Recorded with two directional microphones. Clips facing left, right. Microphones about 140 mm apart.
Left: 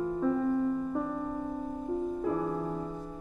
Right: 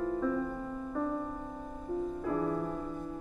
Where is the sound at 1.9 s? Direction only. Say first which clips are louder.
Left 2 dB; 20° left (ahead or behind).